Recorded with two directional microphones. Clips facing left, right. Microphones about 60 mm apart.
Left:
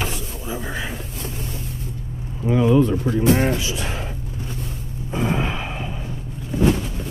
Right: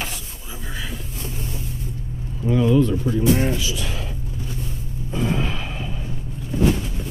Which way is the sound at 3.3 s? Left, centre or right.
Left.